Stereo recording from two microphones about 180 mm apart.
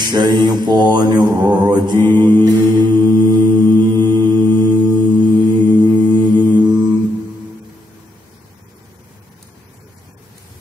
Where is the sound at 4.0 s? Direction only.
10° left (ahead or behind).